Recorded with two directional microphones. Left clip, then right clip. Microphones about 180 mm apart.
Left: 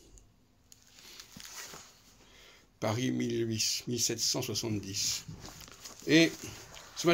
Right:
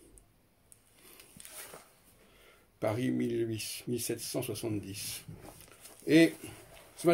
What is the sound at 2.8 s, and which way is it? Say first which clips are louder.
Speech: right 1 dB; 20° right (ahead or behind).